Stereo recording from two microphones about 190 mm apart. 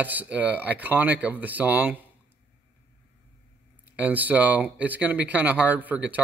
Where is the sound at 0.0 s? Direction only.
10° right (ahead or behind).